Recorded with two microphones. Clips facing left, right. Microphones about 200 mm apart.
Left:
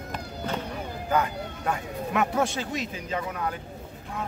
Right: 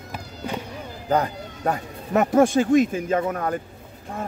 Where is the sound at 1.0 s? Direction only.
35° right (ahead or behind).